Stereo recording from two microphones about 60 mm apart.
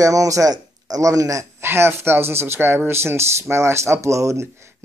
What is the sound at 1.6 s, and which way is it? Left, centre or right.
Speech, right.